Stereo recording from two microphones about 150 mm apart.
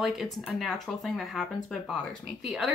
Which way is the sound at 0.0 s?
Centre (ahead or behind).